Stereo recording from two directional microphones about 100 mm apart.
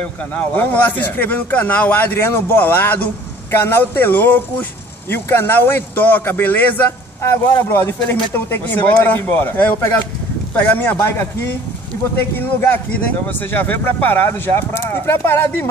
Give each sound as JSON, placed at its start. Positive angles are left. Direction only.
{"t": 0.0, "sound": "speech", "side_deg": 15}
{"t": 12.4, "sound": "speech", "side_deg": 20}